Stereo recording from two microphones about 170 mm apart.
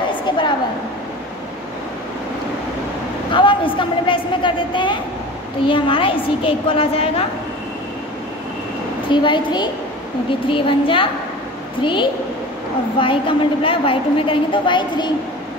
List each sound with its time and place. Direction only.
0.3 s a sound: 30° left (ahead or behind)
3.3 s a man's voice: 30° left (ahead or behind)
9.1 s a man's voice: 30° left (ahead or behind)